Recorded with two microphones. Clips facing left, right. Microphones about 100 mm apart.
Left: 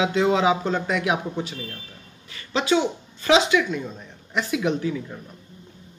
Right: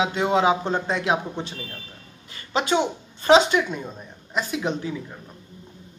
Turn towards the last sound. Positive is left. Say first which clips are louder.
# left 3 dB
turn(degrees=-25)  # may be behind; listen again after turning